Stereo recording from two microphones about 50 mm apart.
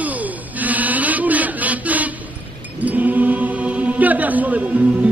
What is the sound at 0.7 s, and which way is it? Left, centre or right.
Chant, right.